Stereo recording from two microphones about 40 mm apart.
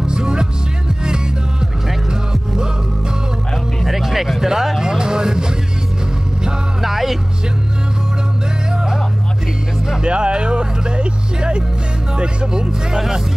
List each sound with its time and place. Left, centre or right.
0.0 s music: centre
3.8 s music: centre
6.8 s music: centre
8.7 s music: centre
10.0 s music: right
12.9 s speech: centre